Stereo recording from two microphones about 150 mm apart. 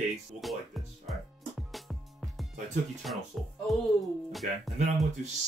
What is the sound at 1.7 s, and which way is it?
Music, centre (ahead or behind).